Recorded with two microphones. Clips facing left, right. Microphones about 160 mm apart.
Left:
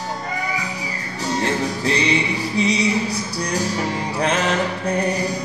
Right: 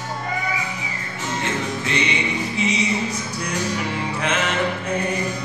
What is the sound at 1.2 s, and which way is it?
Music, 35° left (ahead or behind).